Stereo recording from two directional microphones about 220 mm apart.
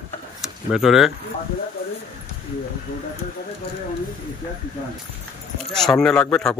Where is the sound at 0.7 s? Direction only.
Centre (ahead or behind).